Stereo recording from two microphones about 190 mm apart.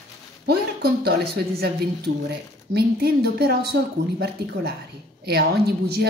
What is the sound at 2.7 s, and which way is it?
A woman's voice, 55° right (ahead or behind).